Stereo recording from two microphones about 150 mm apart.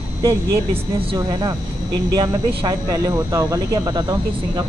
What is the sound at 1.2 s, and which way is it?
Speech, 25° right (ahead or behind).